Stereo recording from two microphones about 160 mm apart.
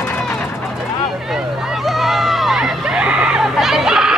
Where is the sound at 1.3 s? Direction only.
Centre (ahead or behind).